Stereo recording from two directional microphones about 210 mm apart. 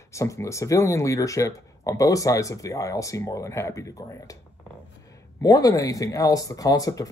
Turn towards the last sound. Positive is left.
turn(degrees=15)  # may be behind; listen again after turning